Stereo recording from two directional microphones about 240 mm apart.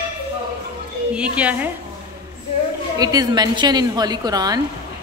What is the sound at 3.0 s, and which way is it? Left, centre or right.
A woman's voice, centre.